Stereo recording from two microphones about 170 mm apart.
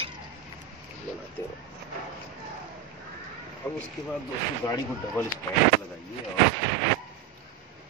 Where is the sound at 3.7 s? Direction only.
5° left (ahead or behind).